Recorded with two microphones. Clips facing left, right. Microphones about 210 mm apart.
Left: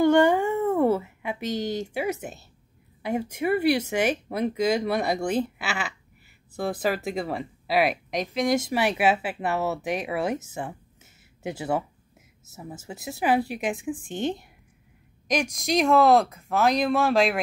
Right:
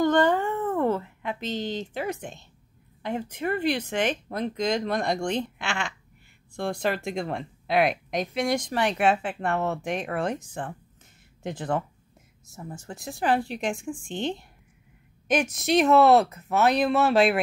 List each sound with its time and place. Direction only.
0.0 s a sound: 10° left (ahead or behind)
3.0 s speech: 10° left (ahead or behind)
15.5 s speech: 5° right (ahead or behind)